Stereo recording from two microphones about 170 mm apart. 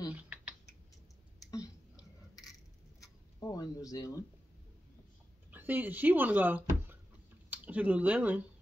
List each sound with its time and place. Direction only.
0.1 s typing: 10° right (ahead or behind)
3.0 s a sound: 20° left (ahead or behind)
5.5 s speech: 10° right (ahead or behind)